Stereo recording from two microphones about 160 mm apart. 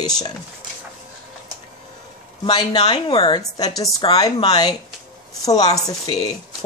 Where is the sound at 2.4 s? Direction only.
25° left (ahead or behind).